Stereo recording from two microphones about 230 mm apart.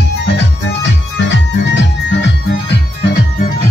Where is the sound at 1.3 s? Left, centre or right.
Left.